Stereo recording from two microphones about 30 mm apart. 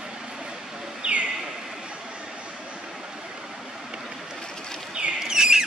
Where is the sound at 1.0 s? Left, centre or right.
Right.